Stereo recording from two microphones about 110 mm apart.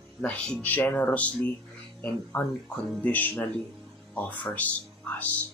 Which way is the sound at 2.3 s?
20° left (ahead or behind).